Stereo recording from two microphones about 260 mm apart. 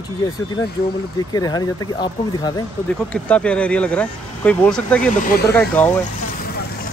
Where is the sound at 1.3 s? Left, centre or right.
Centre.